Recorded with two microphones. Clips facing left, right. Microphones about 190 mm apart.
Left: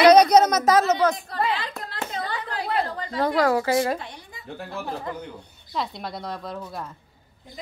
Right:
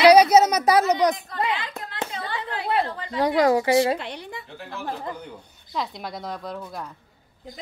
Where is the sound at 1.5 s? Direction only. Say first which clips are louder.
Even; 35° left (ahead or behind).